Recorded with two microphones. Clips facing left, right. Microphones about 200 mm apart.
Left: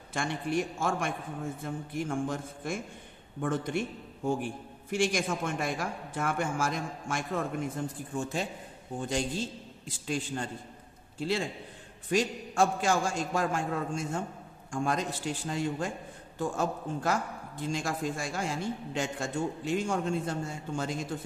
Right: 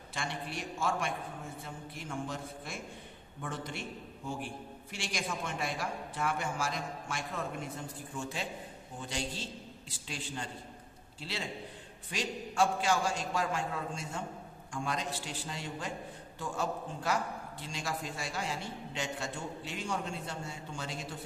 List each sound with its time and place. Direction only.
0.1 s a man's voice: 50° left (ahead or behind)
9.8 s a man's voice: 50° left (ahead or behind)